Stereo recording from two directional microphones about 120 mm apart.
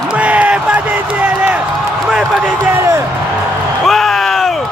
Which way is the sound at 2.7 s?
20° right (ahead or behind).